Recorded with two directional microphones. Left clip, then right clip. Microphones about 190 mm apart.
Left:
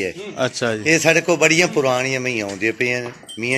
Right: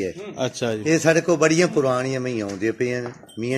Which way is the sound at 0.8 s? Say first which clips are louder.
Left 3 dB; 40° right (ahead or behind).